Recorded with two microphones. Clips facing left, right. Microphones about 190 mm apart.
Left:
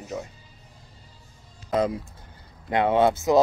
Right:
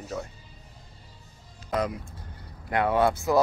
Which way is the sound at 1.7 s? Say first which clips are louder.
Left 4 dB; 25° left (ahead or behind).